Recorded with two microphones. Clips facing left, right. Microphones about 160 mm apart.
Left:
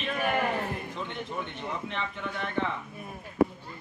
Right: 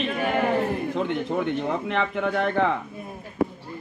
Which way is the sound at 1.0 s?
80° right.